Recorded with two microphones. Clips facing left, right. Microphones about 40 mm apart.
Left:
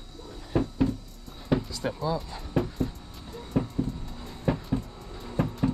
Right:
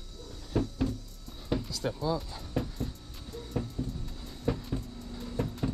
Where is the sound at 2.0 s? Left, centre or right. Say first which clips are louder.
Left 2 dB; centre.